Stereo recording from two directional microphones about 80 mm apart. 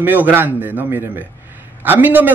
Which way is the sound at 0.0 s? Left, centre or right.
Right.